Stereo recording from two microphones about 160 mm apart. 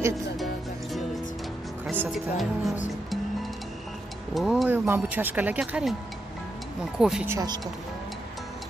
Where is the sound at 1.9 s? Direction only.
10° right (ahead or behind).